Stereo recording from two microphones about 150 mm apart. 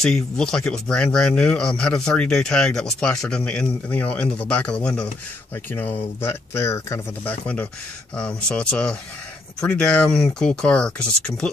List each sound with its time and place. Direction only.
0.0 s speech: 5° left (ahead or behind)